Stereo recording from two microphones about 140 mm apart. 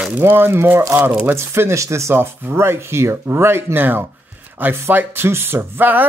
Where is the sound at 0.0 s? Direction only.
15° right (ahead or behind).